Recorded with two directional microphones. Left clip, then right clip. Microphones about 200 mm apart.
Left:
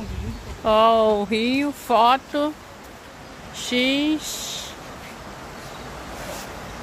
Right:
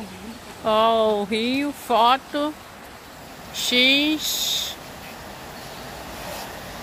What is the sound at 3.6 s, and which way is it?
Speech, 5° left (ahead or behind).